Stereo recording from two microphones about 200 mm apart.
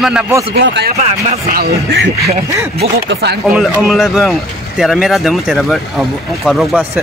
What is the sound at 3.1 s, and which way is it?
Speech, 55° right (ahead or behind).